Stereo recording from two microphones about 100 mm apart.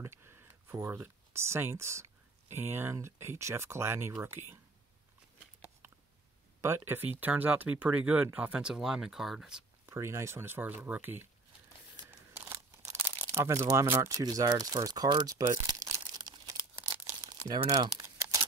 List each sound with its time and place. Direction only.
0.0 s speech: 25° right (ahead or behind)
6.6 s speech: 25° right (ahead or behind); by 9.5 s 5° right (ahead or behind)
9.8 s speech: 25° right (ahead or behind)
12.4 s crumpling: 25° right (ahead or behind)
13.9 s speech: 35° right (ahead or behind)
15.2 s crumpling: 40° right (ahead or behind)
18.0 s crumpling: 30° right (ahead or behind)